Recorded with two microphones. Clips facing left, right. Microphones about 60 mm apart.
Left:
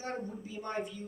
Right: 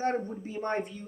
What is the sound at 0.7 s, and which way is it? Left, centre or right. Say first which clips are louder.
Speech: right 3 dB; right.